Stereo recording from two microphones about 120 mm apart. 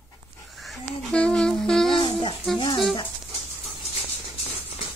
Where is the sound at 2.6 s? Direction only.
45° left (ahead or behind).